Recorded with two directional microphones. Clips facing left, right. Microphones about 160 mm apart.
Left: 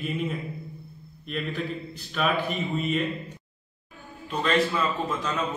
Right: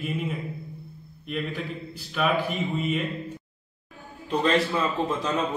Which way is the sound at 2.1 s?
5° right (ahead or behind).